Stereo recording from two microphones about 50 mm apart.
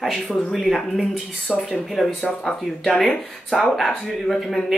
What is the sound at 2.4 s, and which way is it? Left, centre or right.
Speech, centre.